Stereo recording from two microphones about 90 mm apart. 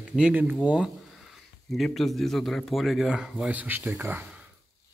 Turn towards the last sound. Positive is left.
turn(degrees=-20)  # may be behind; listen again after turning